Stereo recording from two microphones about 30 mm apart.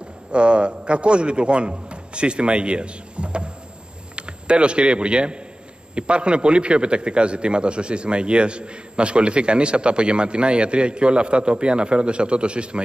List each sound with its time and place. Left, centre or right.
0.3 s a man's voice: right